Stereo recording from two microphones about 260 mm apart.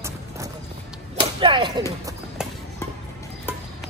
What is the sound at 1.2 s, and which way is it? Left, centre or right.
Whip, centre.